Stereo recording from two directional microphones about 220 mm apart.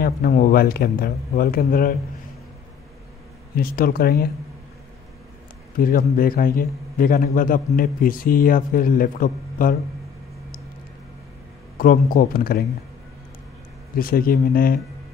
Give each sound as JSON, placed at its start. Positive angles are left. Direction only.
{"t": 0.0, "sound": "speech", "side_deg": 40}
{"t": 3.5, "sound": "speech", "side_deg": 40}
{"t": 5.8, "sound": "speech", "side_deg": 40}
{"t": 11.8, "sound": "speech", "side_deg": 40}
{"t": 13.9, "sound": "speech", "side_deg": 40}